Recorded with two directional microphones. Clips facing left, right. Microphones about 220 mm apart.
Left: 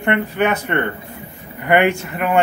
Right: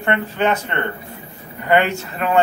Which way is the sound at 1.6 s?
15° left (ahead or behind).